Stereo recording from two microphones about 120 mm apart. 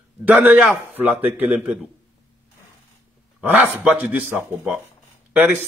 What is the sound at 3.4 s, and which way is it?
A man's voice, 15° right (ahead or behind).